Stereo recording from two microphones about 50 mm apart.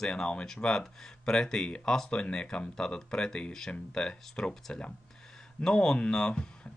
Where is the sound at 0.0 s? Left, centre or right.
Centre.